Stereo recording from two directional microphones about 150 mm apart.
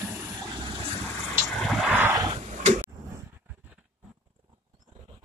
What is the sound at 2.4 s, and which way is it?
Tick-tock, 50° right (ahead or behind).